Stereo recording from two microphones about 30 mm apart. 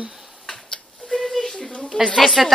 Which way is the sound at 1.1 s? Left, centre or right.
Centre.